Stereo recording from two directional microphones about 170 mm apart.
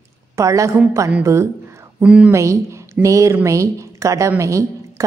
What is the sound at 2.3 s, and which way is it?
A woman's voice, 15° right (ahead or behind).